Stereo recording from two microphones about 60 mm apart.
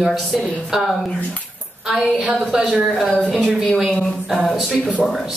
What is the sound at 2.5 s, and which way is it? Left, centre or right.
Speech, centre.